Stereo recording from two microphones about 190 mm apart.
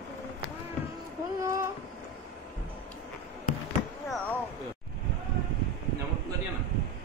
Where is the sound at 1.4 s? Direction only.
15° right (ahead or behind).